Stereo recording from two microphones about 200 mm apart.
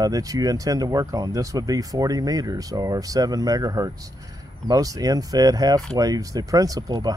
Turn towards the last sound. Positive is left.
turn(degrees=-20)  # may be behind; listen again after turning